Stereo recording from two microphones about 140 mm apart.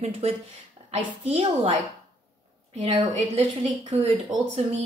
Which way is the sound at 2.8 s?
45° right (ahead or behind).